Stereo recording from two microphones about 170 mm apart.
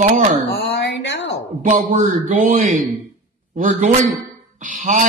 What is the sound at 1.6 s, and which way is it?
A man's voice, 55° right (ahead or behind).